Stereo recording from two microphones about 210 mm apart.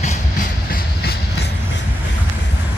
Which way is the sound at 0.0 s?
35° left (ahead or behind).